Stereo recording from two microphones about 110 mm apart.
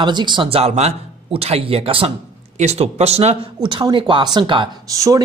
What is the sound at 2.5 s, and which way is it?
Speech, 85° right.